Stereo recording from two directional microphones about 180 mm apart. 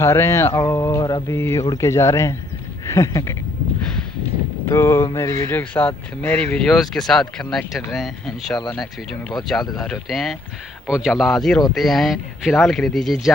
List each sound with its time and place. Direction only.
0.0 s speech: 15° left (ahead or behind)
4.6 s speech: 15° left (ahead or behind)